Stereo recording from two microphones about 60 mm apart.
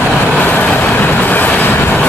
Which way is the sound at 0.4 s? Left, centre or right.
Left.